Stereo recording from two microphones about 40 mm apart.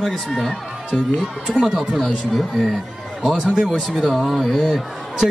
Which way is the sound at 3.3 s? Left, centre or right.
Right.